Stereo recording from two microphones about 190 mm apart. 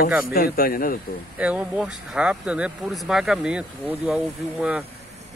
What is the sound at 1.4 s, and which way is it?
Speech, 5° right (ahead or behind).